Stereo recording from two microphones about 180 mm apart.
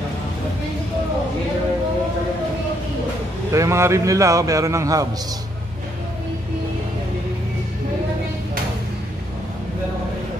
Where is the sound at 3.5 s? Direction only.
15° right (ahead or behind).